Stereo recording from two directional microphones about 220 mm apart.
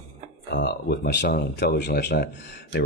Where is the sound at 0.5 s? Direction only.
45° left (ahead or behind).